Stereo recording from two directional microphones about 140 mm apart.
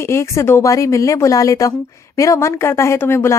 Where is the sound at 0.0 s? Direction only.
20° left (ahead or behind).